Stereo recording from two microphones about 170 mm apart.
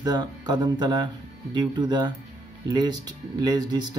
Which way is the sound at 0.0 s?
25° right (ahead or behind).